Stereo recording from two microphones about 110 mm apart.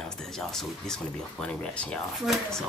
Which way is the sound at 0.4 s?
5° left (ahead or behind).